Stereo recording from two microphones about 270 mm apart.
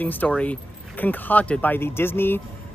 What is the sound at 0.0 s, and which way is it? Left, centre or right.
Speech, centre.